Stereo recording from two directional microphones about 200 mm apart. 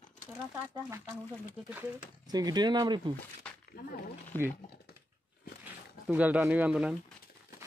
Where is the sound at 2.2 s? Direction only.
20° right (ahead or behind).